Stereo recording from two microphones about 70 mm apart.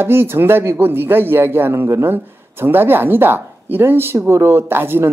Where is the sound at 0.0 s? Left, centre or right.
Right.